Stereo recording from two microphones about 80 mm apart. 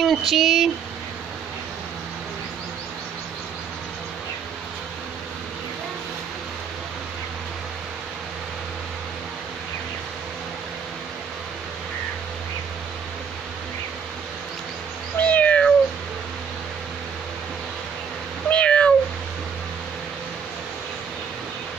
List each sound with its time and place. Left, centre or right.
0.0 s speech: centre
15.1 s cat: centre
18.5 s cat: centre